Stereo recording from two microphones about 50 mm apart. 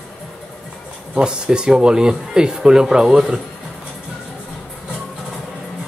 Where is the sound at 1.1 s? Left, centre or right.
Centre.